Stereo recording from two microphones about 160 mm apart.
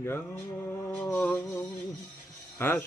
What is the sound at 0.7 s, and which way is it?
Music, 15° left (ahead or behind).